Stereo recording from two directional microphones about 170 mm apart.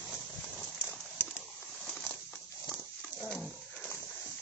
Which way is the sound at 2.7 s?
Centre (ahead or behind).